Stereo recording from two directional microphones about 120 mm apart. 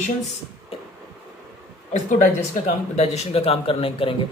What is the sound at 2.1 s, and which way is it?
A man's voice, 80° left.